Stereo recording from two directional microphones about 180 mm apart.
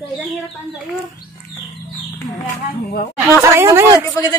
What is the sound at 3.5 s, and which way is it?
Speech, 15° right (ahead or behind).